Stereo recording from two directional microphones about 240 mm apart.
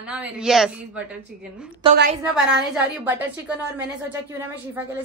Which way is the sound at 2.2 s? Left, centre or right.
Centre.